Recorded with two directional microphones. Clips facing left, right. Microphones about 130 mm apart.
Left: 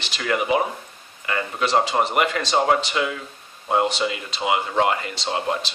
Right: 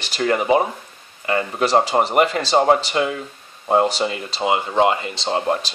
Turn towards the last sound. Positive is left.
turn(degrees=-25)  # may be behind; listen again after turning